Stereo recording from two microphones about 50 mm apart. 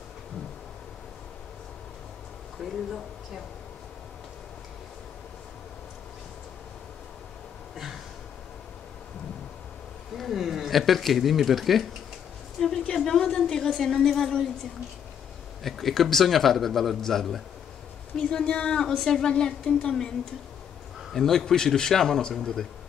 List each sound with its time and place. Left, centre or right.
2.6 s speech: centre
7.7 s a sound: centre
10.1 s speech: centre
12.5 s a sound: centre
13.2 s a woman's voice: centre
15.6 s speech: centre
18.1 s speech: left
18.8 s a man's voice: centre
21.1 s a man's voice: centre